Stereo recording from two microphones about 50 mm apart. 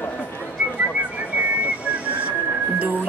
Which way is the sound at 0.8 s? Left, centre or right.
Right.